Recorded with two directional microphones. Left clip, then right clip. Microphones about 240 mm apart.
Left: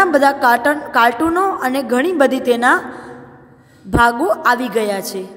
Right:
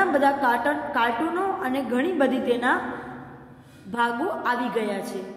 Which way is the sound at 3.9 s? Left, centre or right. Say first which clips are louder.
Left 11 dB; left.